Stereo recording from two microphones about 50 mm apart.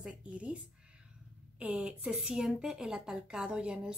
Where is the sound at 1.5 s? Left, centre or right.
Right.